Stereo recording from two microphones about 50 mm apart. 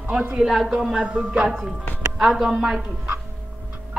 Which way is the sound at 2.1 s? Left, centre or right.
Centre.